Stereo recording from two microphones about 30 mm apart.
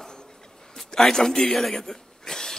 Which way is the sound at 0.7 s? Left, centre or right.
Centre.